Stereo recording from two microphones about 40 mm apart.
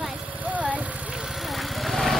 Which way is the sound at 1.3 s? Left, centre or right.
Centre.